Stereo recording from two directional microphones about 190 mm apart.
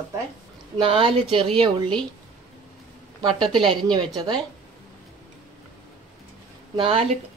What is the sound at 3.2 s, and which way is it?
A woman's voice, 25° right (ahead or behind).